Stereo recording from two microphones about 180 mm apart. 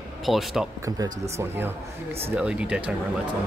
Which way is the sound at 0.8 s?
15° right (ahead or behind).